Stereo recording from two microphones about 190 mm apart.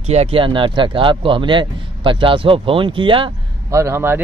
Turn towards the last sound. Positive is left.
turn(degrees=-15)  # may be behind; listen again after turning